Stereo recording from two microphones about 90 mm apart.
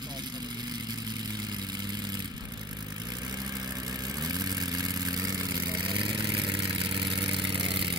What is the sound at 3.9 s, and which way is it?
Vehicle, 45° right (ahead or behind).